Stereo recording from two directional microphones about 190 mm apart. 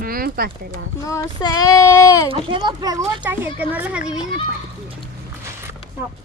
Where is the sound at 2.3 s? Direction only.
25° right (ahead or behind).